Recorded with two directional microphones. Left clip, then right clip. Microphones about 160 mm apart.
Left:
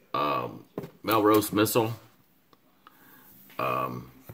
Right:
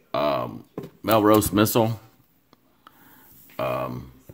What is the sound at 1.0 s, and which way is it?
Speech, 45° right (ahead or behind).